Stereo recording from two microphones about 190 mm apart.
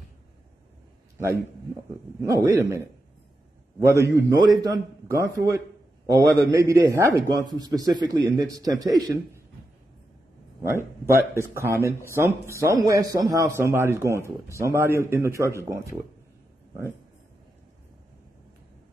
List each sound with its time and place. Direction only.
2.2 s a man's voice: 15° right (ahead or behind)
3.8 s a man's voice: 15° right (ahead or behind)
10.6 s a man's voice: 15° right (ahead or behind)